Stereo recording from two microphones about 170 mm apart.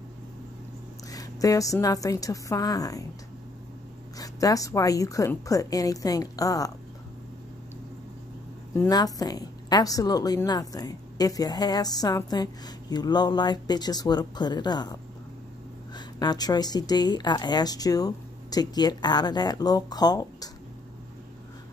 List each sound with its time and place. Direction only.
1.1 s a woman's voice: 20° left (ahead or behind)
4.2 s a woman's voice: 20° left (ahead or behind)
8.7 s a woman's voice: 20° left (ahead or behind)
16.2 s a woman's voice: 25° left (ahead or behind)